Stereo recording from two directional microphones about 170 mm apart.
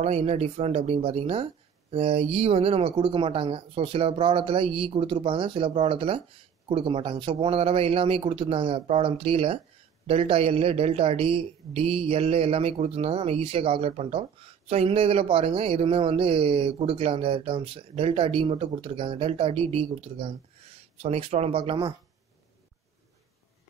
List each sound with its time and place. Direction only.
0.0 s speech: 40° right (ahead or behind)